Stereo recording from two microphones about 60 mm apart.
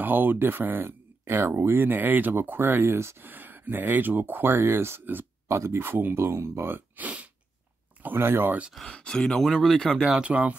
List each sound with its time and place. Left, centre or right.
0.0 s speech: right
3.3 s speech: right
5.5 s speech: right
7.0 s a sound: right
8.0 s speech: right
8.9 s speech: centre
9.9 s speech: centre
10.2 s a sound: right